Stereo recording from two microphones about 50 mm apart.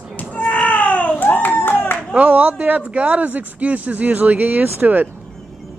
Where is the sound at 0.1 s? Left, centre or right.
Left.